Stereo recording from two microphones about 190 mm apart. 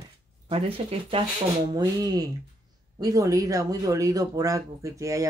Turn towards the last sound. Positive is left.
turn(degrees=-15)  # may be behind; listen again after turning